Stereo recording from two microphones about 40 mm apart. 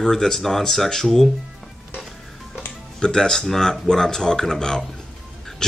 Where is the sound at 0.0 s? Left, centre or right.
Centre.